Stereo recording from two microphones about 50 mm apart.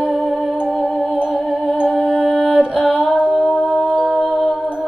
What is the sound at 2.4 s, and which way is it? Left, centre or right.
Music, right.